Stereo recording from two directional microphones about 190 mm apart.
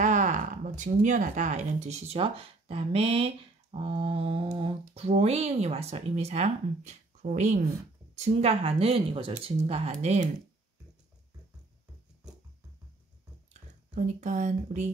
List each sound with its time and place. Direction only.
0.0 s speech: 40° right (ahead or behind)
13.5 s speech: 40° right (ahead or behind)